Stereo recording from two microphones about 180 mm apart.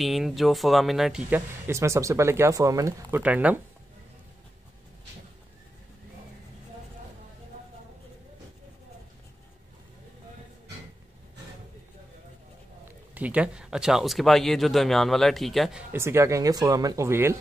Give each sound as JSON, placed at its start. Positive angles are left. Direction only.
{"t": 0.0, "sound": "speech", "side_deg": 0}
{"t": 1.7, "sound": "speech", "side_deg": -15}
{"t": 13.1, "sound": "speech", "side_deg": -10}
{"t": 15.9, "sound": "speech", "side_deg": -15}